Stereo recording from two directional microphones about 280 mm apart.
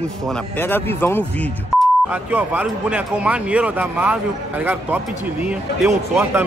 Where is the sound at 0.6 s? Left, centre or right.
Centre.